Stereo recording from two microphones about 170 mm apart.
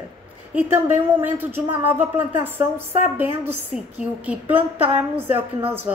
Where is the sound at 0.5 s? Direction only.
10° right (ahead or behind).